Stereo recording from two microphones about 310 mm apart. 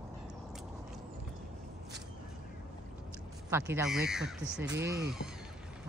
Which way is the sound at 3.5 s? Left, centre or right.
Centre.